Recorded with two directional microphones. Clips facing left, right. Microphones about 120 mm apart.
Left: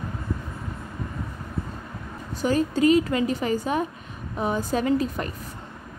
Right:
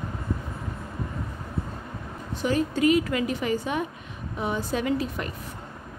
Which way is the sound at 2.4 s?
35° left (ahead or behind).